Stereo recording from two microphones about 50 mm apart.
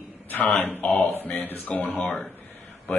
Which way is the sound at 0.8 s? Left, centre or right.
Left.